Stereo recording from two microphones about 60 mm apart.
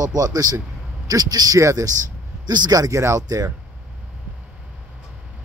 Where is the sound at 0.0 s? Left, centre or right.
Right.